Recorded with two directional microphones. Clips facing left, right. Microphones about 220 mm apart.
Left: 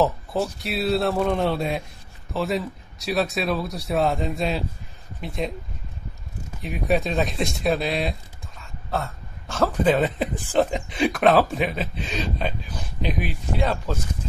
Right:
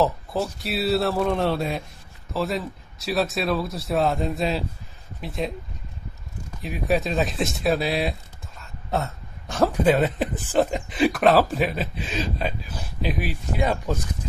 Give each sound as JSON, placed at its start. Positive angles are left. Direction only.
{"t": 0.0, "sound": "speech", "side_deg": 0}
{"t": 6.6, "sound": "speech", "side_deg": 0}
{"t": 8.9, "sound": "speech", "side_deg": -15}